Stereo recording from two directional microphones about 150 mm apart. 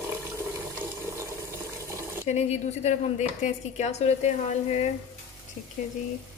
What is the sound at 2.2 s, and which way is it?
Speech, 50° left (ahead or behind).